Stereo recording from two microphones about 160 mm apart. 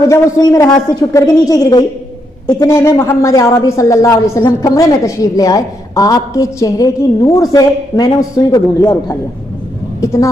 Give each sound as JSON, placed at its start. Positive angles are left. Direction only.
{"t": 0.1, "sound": "a woman's voice", "side_deg": 20}